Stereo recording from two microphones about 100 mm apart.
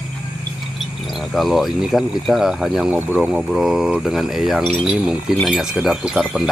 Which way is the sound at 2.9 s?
15° right (ahead or behind).